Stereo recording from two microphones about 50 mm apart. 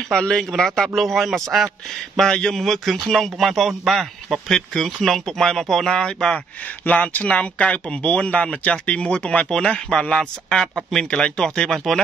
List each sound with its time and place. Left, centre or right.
0.1 s speech: centre
2.1 s speech: centre
2.6 s speech: centre
6.9 s speech: left